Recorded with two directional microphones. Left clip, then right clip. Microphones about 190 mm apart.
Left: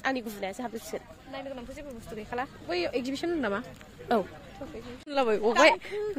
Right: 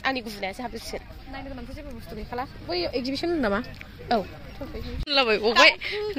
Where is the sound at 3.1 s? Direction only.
45° right (ahead or behind).